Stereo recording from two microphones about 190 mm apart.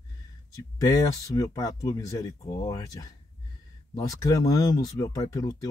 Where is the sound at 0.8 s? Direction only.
15° left (ahead or behind).